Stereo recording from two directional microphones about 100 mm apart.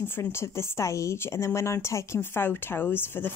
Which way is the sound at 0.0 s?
25° left (ahead or behind).